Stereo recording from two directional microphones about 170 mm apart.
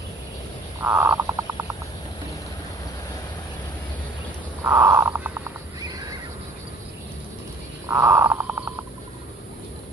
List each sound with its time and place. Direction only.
0.8 s crow: 15° right (ahead or behind)
4.6 s crow: 15° right (ahead or behind)
7.9 s crow: 15° right (ahead or behind)